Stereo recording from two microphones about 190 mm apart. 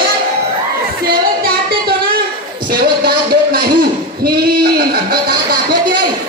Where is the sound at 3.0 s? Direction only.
55° right (ahead or behind).